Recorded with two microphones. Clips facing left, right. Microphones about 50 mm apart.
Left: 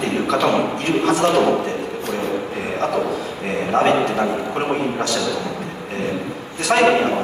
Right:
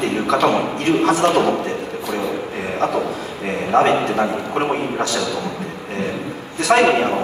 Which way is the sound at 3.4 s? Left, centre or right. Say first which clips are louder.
Right 2 dB; right.